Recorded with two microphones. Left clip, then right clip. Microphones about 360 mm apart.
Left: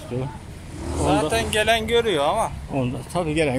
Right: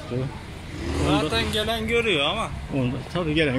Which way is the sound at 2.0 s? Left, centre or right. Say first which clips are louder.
Left 2 dB; left.